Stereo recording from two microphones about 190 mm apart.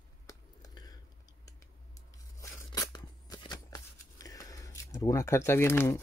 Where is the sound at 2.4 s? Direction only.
20° left (ahead or behind).